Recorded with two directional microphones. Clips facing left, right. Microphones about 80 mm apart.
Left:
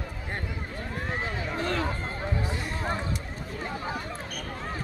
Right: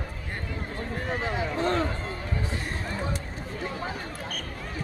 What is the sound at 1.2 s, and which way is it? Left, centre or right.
Run, right.